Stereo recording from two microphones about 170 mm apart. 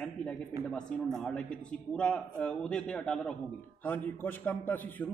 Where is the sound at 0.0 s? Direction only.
5° left (ahead or behind).